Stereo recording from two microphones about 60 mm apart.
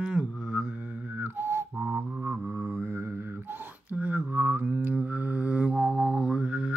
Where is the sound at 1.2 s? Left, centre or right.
Right.